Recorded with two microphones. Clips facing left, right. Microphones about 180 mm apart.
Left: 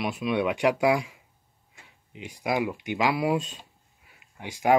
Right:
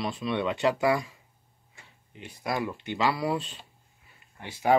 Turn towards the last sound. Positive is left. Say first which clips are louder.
# left 2 dB
turn(degrees=10)  # may be behind; listen again after turning